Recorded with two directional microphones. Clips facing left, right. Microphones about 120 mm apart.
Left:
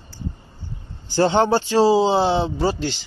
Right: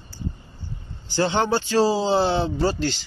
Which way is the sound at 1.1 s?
35° left (ahead or behind).